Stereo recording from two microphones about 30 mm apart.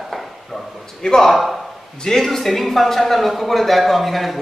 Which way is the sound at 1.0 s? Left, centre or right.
Left.